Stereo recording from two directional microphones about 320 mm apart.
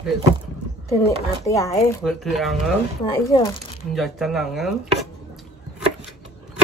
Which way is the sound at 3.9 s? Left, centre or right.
Centre.